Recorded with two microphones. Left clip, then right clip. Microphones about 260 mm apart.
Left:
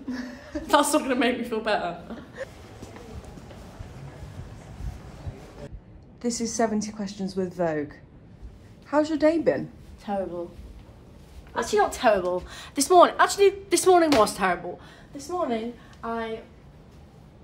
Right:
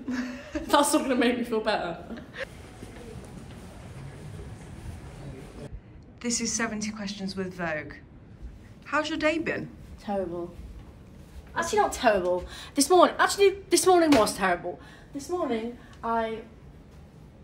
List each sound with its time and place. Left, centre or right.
0.1 s a sound: centre
0.7 s a woman's voice: centre
6.3 s a woman's voice: centre
7.0 s a woman's voice: left
8.9 s a woman's voice: centre
10.0 s a woman's voice: centre
11.5 s a woman's voice: centre